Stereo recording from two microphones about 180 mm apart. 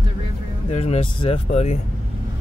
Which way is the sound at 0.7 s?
35° left (ahead or behind).